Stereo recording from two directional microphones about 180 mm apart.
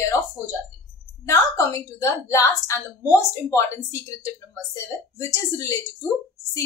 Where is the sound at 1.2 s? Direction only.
20° left (ahead or behind).